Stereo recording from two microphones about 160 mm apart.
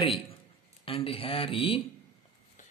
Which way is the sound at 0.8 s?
35° left (ahead or behind).